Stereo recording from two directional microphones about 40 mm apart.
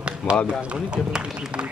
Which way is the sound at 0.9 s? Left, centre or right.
Centre.